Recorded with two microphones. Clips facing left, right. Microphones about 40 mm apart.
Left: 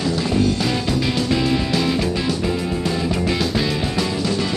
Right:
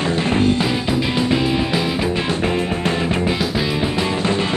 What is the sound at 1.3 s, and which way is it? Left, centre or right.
Music, centre.